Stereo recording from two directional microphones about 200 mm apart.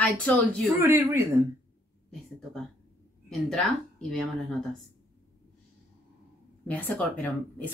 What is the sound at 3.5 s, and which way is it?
Speech, centre (ahead or behind).